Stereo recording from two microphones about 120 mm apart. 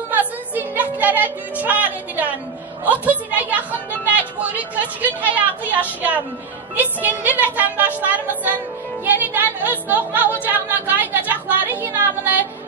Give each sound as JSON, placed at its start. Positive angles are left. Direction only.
{"t": 0.1, "sound": "music", "side_deg": -15}
{"t": 2.8, "sound": "a sound", "side_deg": -15}
{"t": 5.0, "sound": "a woman's voice", "side_deg": -15}